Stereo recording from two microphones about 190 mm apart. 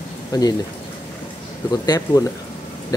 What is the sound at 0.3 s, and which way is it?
Speech, 20° left (ahead or behind).